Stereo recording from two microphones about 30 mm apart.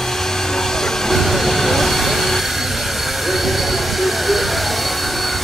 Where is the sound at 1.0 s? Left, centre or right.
Centre.